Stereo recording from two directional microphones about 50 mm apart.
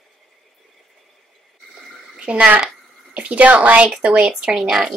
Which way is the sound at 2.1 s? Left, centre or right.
Right.